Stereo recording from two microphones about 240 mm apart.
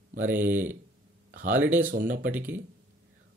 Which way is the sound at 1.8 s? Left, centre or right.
Right.